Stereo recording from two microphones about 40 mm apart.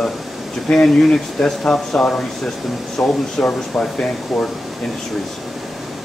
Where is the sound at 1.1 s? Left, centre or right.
Centre.